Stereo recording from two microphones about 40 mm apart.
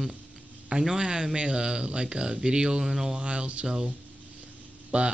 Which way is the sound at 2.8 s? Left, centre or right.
Centre.